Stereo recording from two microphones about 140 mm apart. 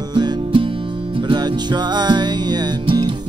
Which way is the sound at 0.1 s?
35° right (ahead or behind).